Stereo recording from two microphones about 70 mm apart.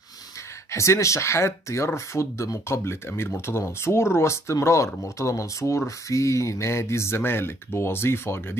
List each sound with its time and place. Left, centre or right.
0.7 s speech: left